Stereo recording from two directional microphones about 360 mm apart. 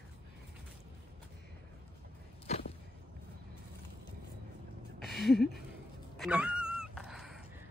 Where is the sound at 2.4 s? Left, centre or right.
Centre.